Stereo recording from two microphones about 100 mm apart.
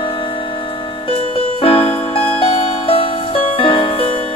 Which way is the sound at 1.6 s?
70° left (ahead or behind).